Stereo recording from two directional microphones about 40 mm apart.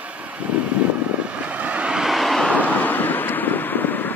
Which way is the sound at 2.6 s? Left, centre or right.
Left.